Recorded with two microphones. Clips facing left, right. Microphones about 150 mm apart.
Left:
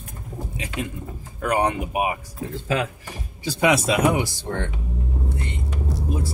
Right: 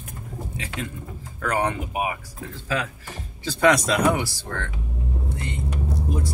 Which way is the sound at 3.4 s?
10° left (ahead or behind).